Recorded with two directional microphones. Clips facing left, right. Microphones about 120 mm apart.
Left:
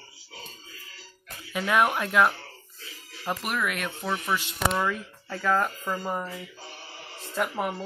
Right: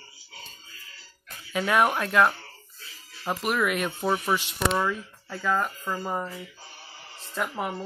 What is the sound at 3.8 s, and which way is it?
Speech, 25° right (ahead or behind).